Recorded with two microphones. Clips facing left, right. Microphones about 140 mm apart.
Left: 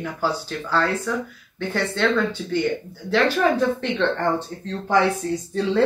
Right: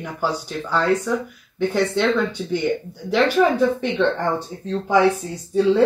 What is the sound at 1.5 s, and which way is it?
Speech, 15° right (ahead or behind).